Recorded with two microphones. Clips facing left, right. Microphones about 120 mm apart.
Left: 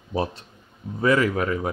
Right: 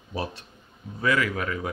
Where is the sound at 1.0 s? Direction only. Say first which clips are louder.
Left 5 dB; 35° left (ahead or behind).